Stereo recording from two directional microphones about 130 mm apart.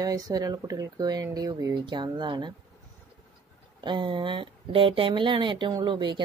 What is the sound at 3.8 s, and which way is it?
Speech, 35° right (ahead or behind).